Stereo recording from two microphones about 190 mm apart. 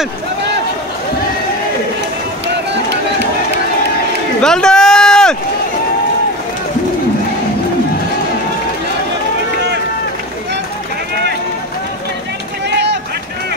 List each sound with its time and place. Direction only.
2.4 s run: 65° right (ahead or behind)
4.4 s run: 5° left (ahead or behind)
12.6 s vehicle: 65° right (ahead or behind)